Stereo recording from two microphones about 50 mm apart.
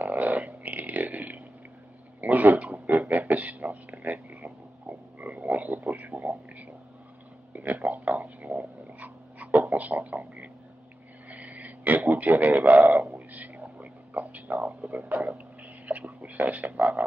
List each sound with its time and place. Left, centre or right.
0.0 s a sound: right
12.1 s a man's voice: right
13.3 s whispering: right
15.3 s frog: right